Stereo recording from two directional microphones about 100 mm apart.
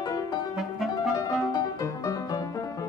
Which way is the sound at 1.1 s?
35° left (ahead or behind).